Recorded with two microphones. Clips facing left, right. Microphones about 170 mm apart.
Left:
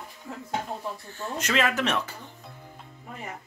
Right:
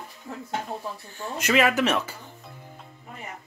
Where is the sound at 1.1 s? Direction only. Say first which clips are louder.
Right 4 dB; 10° right (ahead or behind).